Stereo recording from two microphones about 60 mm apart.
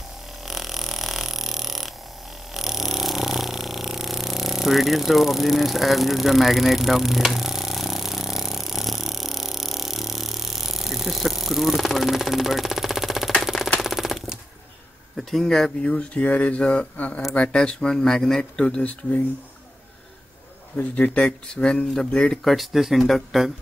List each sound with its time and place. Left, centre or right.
0.5 s a sound: centre
13.4 s machine gun: centre
15.1 s speech: centre; by 17.2 s left
17.4 s speech: centre
20.7 s speech: left
21.5 s speech: centre
22.4 s speech: centre